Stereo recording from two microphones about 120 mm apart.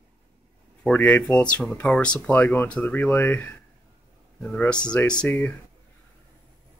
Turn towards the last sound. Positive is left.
turn(degrees=15)  # may be behind; listen again after turning